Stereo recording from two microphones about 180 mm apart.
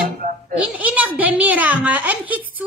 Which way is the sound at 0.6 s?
10° right (ahead or behind).